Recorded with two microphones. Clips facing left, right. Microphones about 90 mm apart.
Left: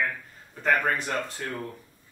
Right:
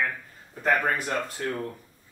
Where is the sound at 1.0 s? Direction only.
5° right (ahead or behind).